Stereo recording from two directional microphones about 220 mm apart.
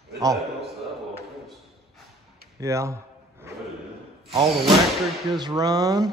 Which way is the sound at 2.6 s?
15° right (ahead or behind).